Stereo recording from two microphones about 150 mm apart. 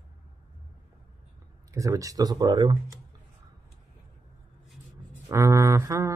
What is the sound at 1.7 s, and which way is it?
Speech, 20° right (ahead or behind).